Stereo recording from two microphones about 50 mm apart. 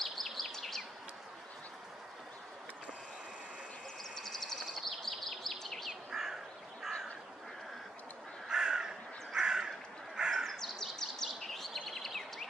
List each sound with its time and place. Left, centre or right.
0.0 s bird vocalization: centre
4.1 s a sound: centre
6.0 s crow: centre
8.5 s crow: centre
10.3 s bird vocalization: centre